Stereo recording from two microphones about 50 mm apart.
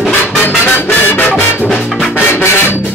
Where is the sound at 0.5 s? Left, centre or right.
Left.